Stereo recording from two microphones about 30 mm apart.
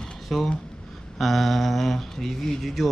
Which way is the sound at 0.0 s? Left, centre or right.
Centre.